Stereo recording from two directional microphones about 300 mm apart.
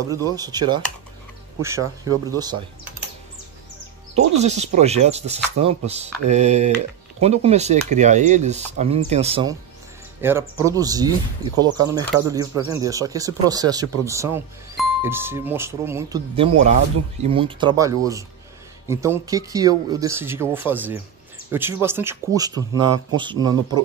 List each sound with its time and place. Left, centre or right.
0.4 s speech: centre
4.4 s speech: right